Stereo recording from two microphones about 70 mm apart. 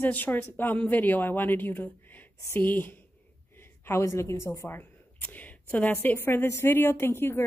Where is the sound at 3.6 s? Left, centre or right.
Left.